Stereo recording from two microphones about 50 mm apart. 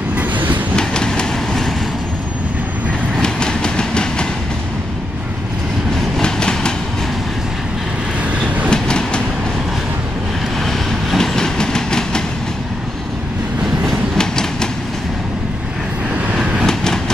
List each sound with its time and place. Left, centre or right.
0.1 s train: right
0.7 s train: centre
3.2 s train: centre
6.1 s train: centre
8.6 s train: centre
10.6 s train: centre
14.1 s train: centre
16.6 s train: centre